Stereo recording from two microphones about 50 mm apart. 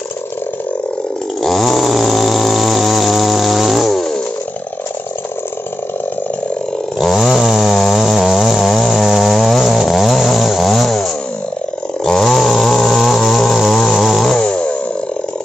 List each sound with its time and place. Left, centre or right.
1.4 s snoring: centre
7.0 s chainsaw: centre
14.3 s chainsaw: centre